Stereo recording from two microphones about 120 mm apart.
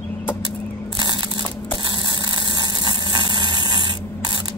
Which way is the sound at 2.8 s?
40° right (ahead or behind).